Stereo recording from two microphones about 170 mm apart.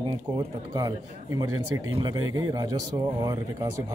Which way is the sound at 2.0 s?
25° right (ahead or behind).